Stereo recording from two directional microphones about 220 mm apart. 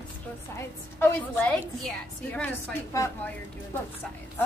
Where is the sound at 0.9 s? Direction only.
10° left (ahead or behind).